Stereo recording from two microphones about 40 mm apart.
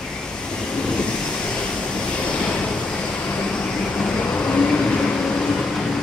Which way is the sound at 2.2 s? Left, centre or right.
Left.